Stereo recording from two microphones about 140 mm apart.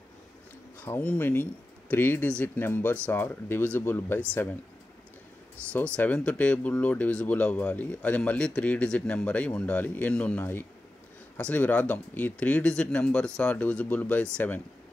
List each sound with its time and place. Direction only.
0.8 s speech: 15° left (ahead or behind)
5.6 s speech: 20° right (ahead or behind)
5.9 s speech: 10° left (ahead or behind)